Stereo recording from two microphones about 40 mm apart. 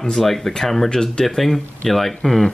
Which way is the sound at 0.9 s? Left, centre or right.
Centre.